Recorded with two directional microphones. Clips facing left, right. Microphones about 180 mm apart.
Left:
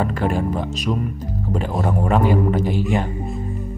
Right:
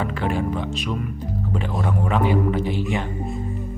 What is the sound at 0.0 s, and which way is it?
Speech, 45° left (ahead or behind).